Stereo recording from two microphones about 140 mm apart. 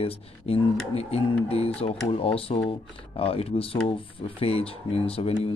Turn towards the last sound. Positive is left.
turn(degrees=45)  # may be behind; listen again after turning